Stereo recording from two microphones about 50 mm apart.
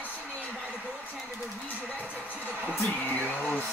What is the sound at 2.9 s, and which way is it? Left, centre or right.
Speech, left.